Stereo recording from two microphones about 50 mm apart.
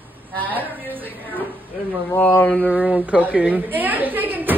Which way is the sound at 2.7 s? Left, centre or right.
Right.